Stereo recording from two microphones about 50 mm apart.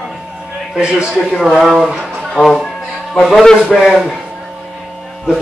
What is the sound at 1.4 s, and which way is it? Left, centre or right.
Speech, centre.